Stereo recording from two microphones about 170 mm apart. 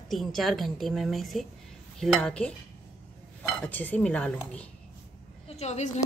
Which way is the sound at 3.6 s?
10° left (ahead or behind).